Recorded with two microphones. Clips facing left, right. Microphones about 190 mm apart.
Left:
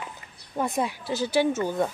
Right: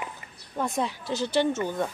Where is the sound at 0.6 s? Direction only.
5° left (ahead or behind).